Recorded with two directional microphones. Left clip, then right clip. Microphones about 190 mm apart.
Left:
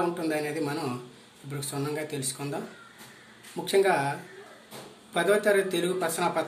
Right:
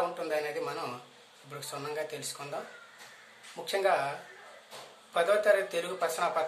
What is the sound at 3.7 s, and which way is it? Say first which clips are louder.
Speech: left 4 dB; 15° right (ahead or behind).